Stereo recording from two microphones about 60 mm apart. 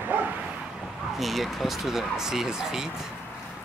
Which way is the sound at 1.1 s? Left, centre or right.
Centre.